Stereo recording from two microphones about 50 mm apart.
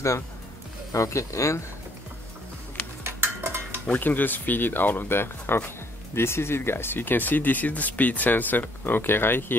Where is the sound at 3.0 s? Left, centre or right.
Right.